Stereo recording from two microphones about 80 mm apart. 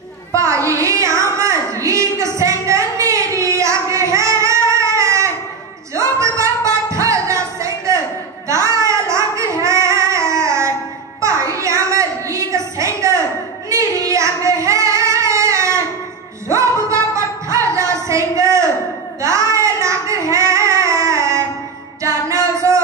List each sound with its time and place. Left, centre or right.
0.3 s a sound: right
5.9 s music: right
8.5 s singing: right
11.1 s a sound: right
13.7 s female singing: right
16.4 s music: right
19.2 s child singing: right
22.0 s music: right